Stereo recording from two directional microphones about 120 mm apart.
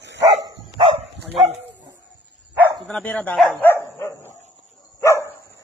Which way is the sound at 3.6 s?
20° left (ahead or behind).